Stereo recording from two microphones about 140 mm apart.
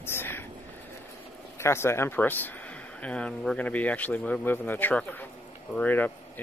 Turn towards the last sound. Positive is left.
turn(degrees=15)  # may be behind; listen again after turning